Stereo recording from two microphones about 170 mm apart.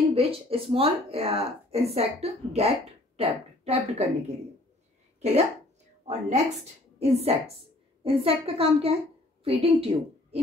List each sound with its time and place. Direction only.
0.1 s a woman's voice: 35° right (ahead or behind)
6.0 s a woman's voice: 40° right (ahead or behind)